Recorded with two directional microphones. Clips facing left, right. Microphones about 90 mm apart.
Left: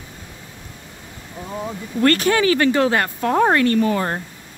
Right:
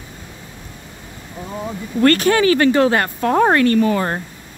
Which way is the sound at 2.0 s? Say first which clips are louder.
Right 3 dB; 55° right (ahead or behind).